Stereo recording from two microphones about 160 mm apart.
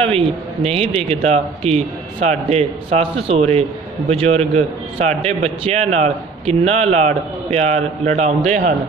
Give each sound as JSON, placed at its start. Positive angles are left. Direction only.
{"t": 0.0, "sound": "a man's voice", "side_deg": -40}